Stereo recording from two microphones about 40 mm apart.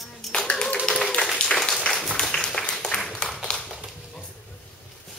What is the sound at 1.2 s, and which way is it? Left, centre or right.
Applause, centre.